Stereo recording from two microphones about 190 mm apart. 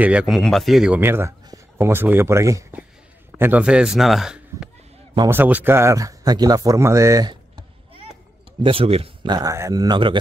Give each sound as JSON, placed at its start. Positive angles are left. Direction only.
{"t": 0.0, "sound": "a man's voice", "side_deg": -5}
{"t": 8.6, "sound": "speech", "side_deg": -30}